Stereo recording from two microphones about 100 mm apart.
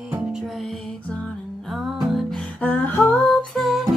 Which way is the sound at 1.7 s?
Centre (ahead or behind).